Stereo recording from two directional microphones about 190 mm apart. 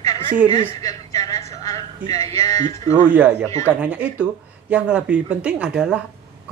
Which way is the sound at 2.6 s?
35° right (ahead or behind).